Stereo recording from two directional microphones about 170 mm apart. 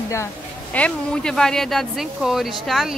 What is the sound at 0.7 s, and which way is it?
Speech, 5° left (ahead or behind).